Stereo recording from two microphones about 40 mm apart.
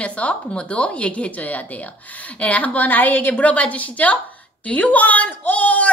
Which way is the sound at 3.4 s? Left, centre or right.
Left.